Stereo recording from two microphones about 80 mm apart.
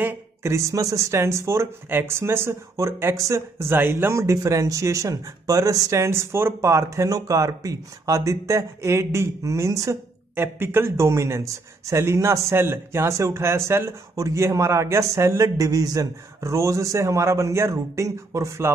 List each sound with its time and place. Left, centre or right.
0.0 s speech: right
3.5 s speech: right
10.3 s speech: right